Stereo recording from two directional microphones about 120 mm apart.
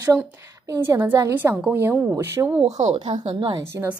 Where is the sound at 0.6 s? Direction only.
25° right (ahead or behind).